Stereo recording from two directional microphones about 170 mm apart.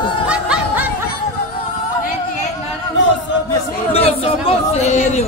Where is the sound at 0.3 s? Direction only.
5° right (ahead or behind).